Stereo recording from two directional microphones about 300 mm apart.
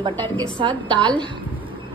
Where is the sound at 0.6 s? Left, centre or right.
Centre.